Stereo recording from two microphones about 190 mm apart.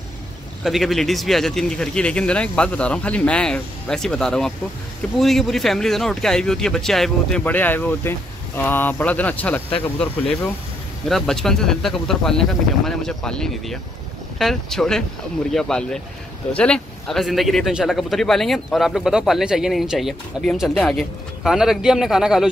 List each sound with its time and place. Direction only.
0.7 s speech: centre (ahead or behind)
11.1 s speech: centre (ahead or behind)